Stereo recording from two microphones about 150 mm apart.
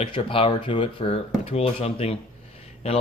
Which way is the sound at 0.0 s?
35° left (ahead or behind).